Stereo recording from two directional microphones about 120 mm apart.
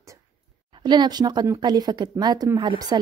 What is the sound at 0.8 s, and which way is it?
A woman's voice, 35° right (ahead or behind).